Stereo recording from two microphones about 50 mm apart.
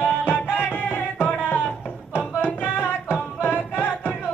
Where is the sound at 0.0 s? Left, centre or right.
Left.